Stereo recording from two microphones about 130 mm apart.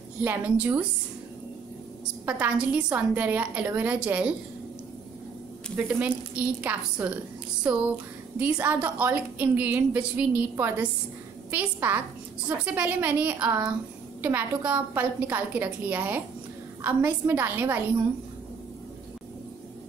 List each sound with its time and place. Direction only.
0.2 s a woman's voice: 15° right (ahead or behind)
2.2 s a woman's voice: 10° right (ahead or behind)
5.9 s a woman's voice: 10° right (ahead or behind)